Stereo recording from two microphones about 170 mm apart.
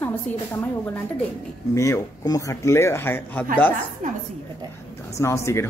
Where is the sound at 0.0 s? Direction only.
10° left (ahead or behind).